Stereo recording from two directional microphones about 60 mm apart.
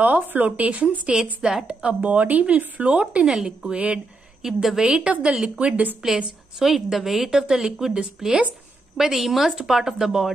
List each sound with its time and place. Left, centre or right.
0.0 s speech: right
1.4 s a woman's voice: centre
1.7 s speech: centre
3.3 s a woman's voice: centre
3.7 s speech: right
4.4 s a woman's voice: centre
4.8 s a woman's voice: centre
6.0 s a woman's voice: centre